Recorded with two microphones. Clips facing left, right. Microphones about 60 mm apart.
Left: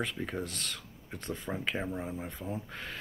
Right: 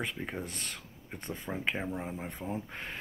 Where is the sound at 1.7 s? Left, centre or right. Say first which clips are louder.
Left 1 dB; centre.